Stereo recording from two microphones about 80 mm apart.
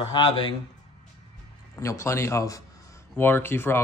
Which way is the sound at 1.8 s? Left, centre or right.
Left.